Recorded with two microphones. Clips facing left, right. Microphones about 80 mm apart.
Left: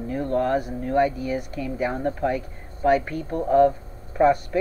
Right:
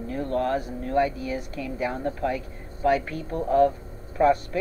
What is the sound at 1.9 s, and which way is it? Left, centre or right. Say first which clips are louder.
Speech: left 3 dB; centre.